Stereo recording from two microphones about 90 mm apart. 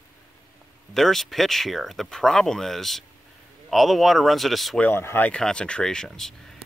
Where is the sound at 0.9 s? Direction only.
Centre (ahead or behind).